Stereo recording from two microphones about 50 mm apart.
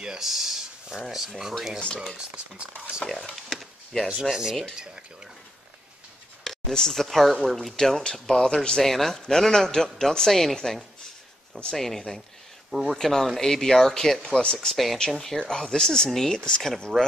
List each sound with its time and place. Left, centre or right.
0.0 s speech: centre
0.3 s a sound: centre
1.1 s speech: centre
2.1 s speech: right
3.1 s speech: centre
4.2 s speech: centre
6.4 s speech: centre